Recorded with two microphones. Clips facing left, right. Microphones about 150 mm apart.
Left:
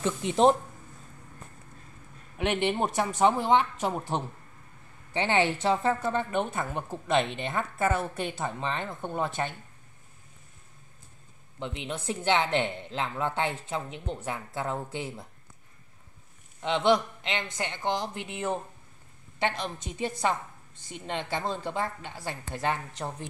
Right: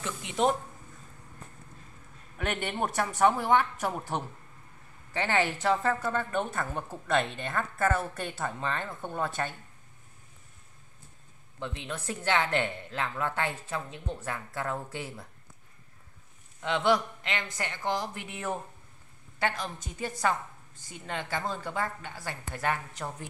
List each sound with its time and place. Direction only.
0.0 s speech: 30° left (ahead or behind)
2.3 s a woman's voice: 15° left (ahead or behind)
11.6 s a woman's voice: 20° left (ahead or behind)
16.6 s a woman's voice: 20° left (ahead or behind)